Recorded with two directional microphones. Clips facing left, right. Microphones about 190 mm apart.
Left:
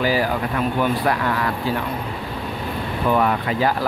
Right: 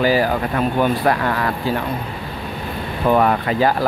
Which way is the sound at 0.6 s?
45° right (ahead or behind).